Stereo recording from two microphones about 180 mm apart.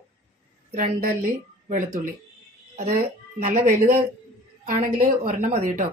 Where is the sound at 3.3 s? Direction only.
35° right (ahead or behind).